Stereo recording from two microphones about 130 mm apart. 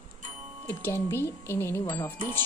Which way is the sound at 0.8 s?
20° left (ahead or behind).